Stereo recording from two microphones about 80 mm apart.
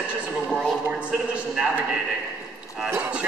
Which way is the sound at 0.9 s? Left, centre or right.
Centre.